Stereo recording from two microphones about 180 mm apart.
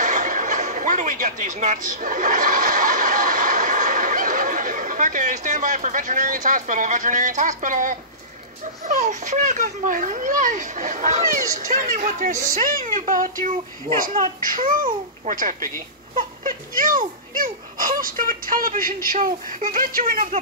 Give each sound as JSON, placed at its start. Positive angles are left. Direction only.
{"t": 0.0, "sound": "a child's voice", "side_deg": -45}